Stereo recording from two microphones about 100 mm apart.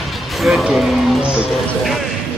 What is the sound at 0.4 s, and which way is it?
Speech, centre (ahead or behind).